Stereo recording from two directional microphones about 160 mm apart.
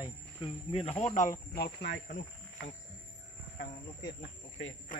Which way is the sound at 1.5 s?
90° left.